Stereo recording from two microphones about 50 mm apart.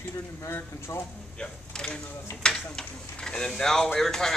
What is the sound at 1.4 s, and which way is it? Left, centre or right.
A man's voice, centre.